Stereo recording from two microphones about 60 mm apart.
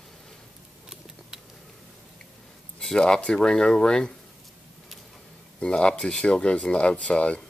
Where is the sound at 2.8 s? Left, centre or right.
Centre.